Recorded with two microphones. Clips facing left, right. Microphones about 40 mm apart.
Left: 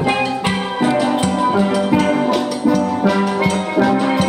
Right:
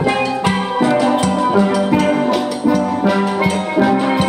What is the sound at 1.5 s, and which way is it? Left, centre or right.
Music, centre.